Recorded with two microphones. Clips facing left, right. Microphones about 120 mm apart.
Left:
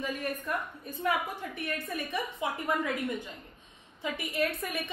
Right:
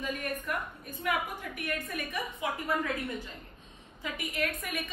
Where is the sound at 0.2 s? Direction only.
30° left (ahead or behind).